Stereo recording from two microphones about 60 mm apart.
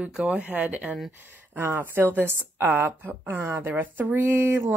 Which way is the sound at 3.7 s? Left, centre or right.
Right.